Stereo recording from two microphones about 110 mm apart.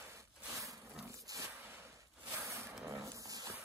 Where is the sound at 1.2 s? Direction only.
30° right (ahead or behind).